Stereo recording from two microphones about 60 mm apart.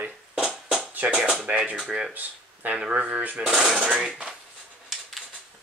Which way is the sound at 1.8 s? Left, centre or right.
Centre.